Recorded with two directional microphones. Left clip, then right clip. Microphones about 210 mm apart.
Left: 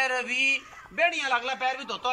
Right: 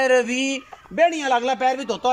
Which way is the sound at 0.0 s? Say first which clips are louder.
Right 6 dB; 30° right (ahead or behind).